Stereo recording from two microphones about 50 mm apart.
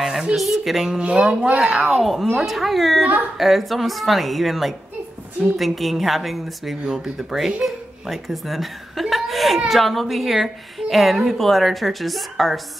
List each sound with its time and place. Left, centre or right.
0.4 s a woman's voice: centre
0.9 s speech: right
1.9 s a woman's voice: centre
9.1 s a sound: centre
9.7 s a woman's voice: centre